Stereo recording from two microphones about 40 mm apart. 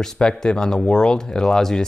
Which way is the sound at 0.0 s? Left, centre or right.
Centre.